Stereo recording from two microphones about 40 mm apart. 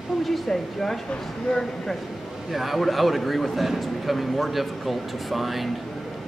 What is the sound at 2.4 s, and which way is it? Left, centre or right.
A man's voice, centre.